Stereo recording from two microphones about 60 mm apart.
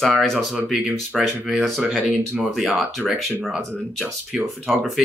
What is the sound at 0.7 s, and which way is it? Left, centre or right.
Speech, right.